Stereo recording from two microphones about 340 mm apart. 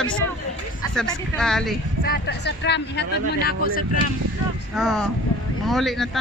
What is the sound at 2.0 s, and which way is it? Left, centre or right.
Speech, left.